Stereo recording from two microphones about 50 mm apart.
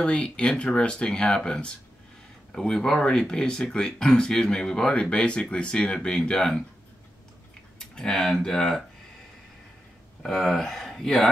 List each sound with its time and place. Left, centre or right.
0.0 s speech: left
7.9 s speech: centre
10.2 s speech: centre